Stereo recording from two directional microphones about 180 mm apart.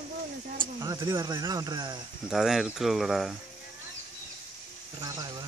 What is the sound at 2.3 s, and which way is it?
Speech, centre (ahead or behind).